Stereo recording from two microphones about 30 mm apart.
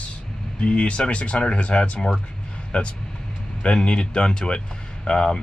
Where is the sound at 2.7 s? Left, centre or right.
Left.